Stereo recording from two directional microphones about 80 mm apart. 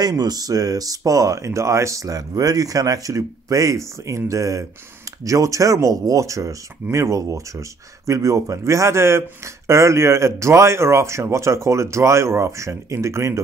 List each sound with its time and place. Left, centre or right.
0.0 s speech: right